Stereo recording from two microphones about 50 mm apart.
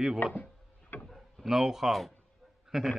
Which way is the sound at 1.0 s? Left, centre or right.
Centre.